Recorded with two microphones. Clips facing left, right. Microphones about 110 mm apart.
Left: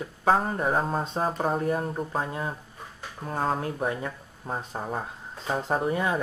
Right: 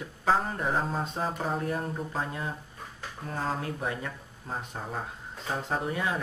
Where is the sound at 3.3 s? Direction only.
45° left (ahead or behind).